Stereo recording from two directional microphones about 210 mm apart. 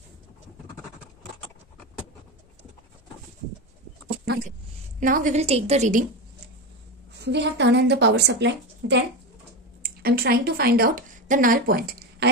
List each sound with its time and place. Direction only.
5.0 s a woman's voice: 40° right (ahead or behind)
7.2 s a woman's voice: 55° right (ahead or behind)